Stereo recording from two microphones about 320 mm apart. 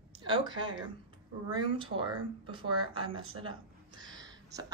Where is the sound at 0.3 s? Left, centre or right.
Centre.